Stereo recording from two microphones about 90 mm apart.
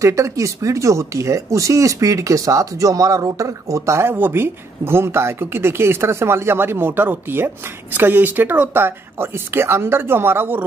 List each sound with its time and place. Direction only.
0.0 s speech: 35° right (ahead or behind)